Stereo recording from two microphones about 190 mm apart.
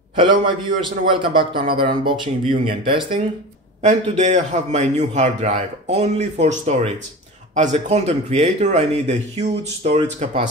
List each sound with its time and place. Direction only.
0.1 s a man's voice: 25° right (ahead or behind)
3.8 s a man's voice: 40° right (ahead or behind)